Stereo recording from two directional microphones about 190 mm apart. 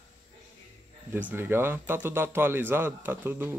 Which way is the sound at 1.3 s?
10° right (ahead or behind).